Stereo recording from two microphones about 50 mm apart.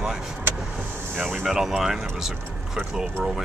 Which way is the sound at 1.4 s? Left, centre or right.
Centre.